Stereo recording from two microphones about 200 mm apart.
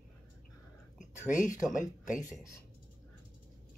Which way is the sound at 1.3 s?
40° left (ahead or behind).